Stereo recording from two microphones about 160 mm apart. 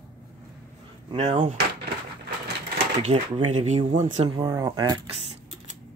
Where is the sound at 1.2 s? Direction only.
35° right (ahead or behind).